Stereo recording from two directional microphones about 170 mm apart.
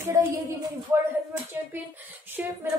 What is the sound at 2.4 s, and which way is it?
Speech, 10° right (ahead or behind).